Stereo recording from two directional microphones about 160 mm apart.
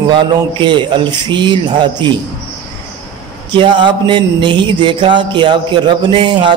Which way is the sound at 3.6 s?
30° right (ahead or behind).